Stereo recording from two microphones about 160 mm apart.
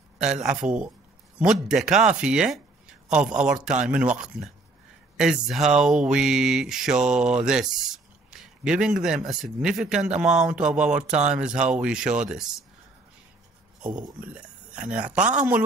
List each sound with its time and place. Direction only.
0.2 s a man's voice: 5° right (ahead or behind)
14.3 s speech: 5° right (ahead or behind)
15.1 s speech: 50° right (ahead or behind)